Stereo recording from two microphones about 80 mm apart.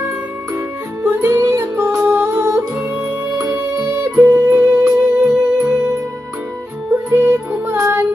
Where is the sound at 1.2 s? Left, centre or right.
Right.